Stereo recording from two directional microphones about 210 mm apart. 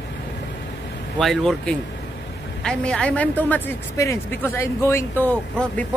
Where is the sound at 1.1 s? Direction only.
Centre (ahead or behind).